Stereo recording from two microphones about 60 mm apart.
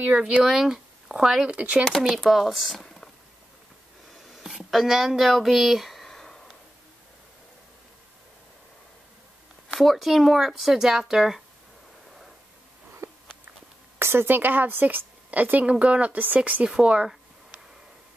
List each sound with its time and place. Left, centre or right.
0.1 s speech: centre
1.5 s speech: right
1.9 s speech: centre
4.3 s a sound: centre
9.8 s speech: centre
13.0 s a sound: right
13.9 s a woman's voice: right
16.6 s speech: centre